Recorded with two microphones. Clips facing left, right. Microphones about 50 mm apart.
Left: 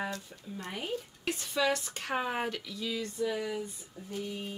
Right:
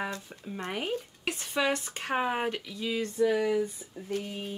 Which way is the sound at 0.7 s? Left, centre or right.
Right.